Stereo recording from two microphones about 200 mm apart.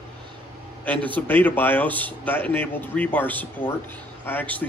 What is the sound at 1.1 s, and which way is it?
A man's voice, 10° left (ahead or behind).